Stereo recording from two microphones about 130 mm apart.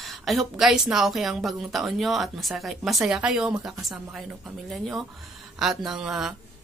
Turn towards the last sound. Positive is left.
turn(degrees=-5)  # may be behind; listen again after turning